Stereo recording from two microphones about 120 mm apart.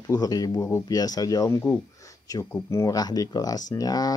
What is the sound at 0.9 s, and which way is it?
Speech, 35° left (ahead or behind).